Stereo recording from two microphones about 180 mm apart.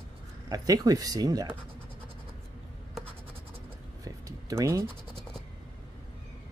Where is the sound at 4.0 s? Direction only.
20° right (ahead or behind).